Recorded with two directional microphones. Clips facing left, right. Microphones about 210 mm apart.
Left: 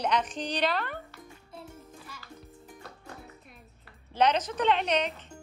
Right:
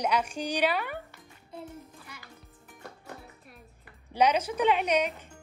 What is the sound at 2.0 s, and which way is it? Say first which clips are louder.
Music: left 1 dB; 15° right (ahead or behind).